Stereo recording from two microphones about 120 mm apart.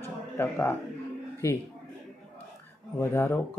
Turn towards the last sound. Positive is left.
turn(degrees=20)  # may be behind; listen again after turning